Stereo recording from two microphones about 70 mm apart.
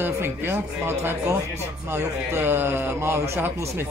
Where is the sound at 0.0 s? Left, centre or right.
Right.